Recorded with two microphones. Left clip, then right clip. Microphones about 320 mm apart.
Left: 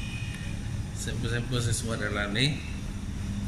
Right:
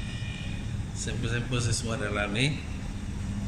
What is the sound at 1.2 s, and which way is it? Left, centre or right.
Speech, centre.